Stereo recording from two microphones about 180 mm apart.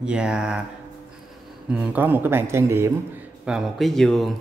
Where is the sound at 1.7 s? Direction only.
5° right (ahead or behind).